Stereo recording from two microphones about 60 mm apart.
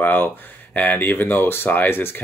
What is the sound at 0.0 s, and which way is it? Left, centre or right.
Speech, left.